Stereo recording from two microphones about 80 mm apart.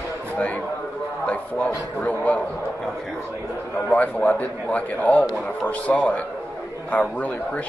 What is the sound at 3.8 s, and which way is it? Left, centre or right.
A man's voice, centre.